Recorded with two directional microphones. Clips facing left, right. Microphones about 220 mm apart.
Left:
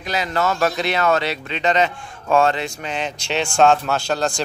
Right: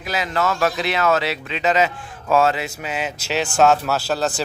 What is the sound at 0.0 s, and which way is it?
Speech, centre (ahead or behind).